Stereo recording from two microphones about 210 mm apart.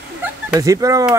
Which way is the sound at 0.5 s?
15° right (ahead or behind).